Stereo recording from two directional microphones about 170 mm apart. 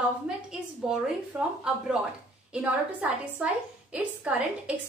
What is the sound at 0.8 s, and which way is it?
A woman's voice, 5° right (ahead or behind).